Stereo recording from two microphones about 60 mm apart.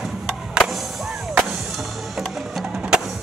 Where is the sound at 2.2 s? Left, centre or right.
Centre.